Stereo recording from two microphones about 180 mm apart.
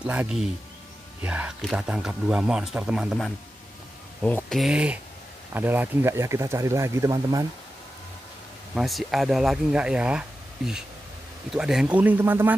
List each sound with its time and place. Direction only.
0.0 s speech: 5° right (ahead or behind)
8.7 s speech: centre (ahead or behind)
11.5 s speech: 5° right (ahead or behind)